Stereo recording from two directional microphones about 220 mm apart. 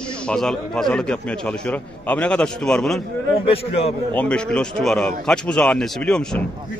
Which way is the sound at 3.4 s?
25° left (ahead or behind).